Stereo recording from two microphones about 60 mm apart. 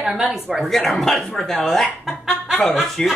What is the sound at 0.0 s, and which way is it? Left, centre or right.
Speech, centre.